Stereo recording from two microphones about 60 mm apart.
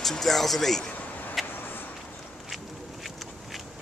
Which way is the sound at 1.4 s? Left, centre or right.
Centre.